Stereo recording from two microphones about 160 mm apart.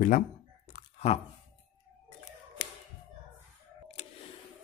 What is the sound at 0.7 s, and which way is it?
Chewing, 45° left (ahead or behind).